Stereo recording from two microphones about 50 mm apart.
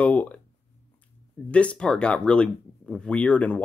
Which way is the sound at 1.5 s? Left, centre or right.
Left.